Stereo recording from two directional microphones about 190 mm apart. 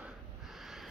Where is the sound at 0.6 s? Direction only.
Centre (ahead or behind).